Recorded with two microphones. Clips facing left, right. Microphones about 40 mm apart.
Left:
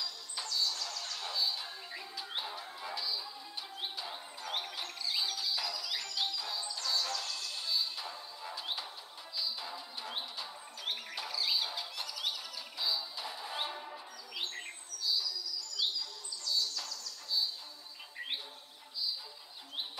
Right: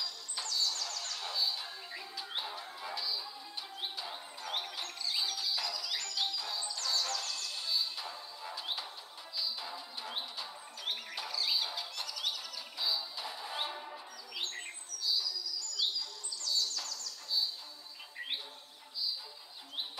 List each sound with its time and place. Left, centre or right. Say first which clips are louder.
0.0 s music: even; centre
16.0 s bird: even; centre
18.1 s chirp: even; centre